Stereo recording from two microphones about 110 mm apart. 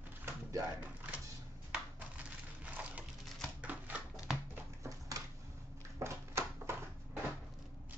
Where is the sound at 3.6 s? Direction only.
15° right (ahead or behind).